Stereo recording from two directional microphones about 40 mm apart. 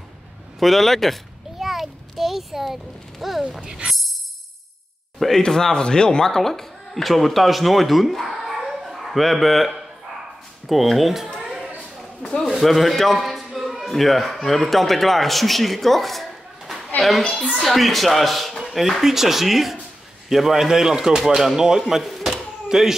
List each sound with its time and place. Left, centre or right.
0.6 s a child's voice: centre
3.6 s speech: right
5.4 s speech: centre
10.7 s speech: centre
11.3 s a sound: centre
12.2 s a man's voice: centre
12.5 s a man's voice: centre
22.0 s a sound: centre
22.7 s speech: centre